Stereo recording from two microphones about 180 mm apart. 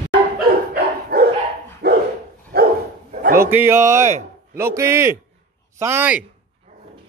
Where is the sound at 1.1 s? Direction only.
60° right (ahead or behind).